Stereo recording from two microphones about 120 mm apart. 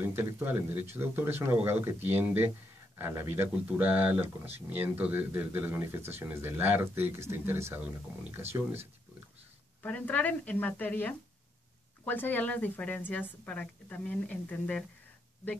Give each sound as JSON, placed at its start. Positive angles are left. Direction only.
{"t": 0.0, "sound": "speech", "side_deg": -20}
{"t": 9.8, "sound": "a woman's voice", "side_deg": 10}